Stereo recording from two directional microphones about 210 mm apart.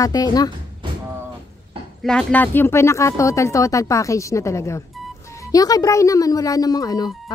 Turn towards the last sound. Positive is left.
turn(degrees=20)  # may be behind; listen again after turning